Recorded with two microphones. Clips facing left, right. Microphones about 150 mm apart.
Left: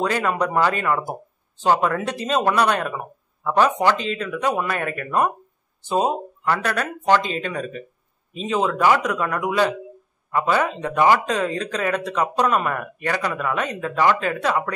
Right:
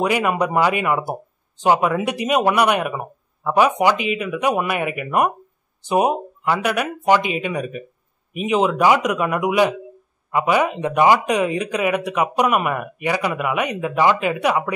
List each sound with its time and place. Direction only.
0.0 s speech: 15° right (ahead or behind)